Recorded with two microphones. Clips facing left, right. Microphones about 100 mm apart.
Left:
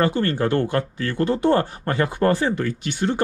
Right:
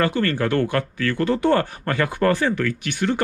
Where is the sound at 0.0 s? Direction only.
20° left (ahead or behind).